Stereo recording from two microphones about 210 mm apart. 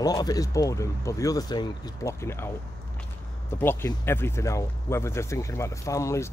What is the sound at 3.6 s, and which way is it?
Speech, 10° left (ahead or behind).